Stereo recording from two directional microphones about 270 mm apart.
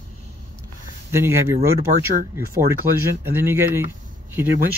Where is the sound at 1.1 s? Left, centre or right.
Centre.